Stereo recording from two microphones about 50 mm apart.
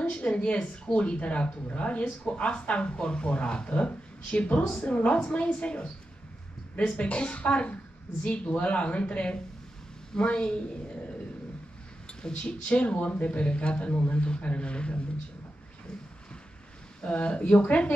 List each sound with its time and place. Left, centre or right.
0.1 s speech: left
7.0 s speech: left
12.1 s speech: centre
17.1 s speech: left